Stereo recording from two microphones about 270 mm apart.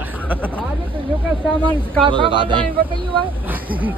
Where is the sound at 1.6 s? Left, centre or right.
Centre.